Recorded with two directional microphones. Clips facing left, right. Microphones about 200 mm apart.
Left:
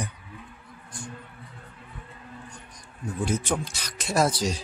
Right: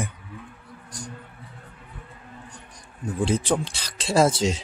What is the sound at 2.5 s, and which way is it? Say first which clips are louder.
Speech: right 1 dB; 30° right (ahead or behind).